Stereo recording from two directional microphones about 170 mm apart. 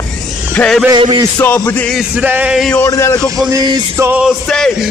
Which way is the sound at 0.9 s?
30° right (ahead or behind).